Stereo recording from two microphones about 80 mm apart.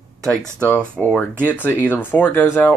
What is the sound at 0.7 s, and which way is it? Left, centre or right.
Speech, centre.